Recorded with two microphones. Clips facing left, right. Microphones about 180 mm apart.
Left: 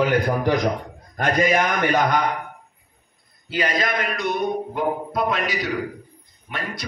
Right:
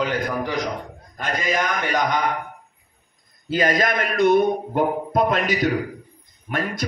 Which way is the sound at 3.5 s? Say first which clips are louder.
Right 3 dB; 45° right (ahead or behind).